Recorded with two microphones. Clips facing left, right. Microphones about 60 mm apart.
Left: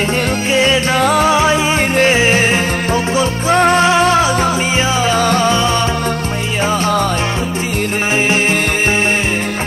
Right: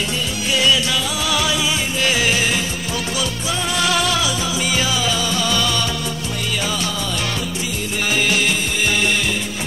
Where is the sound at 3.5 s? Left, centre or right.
Left.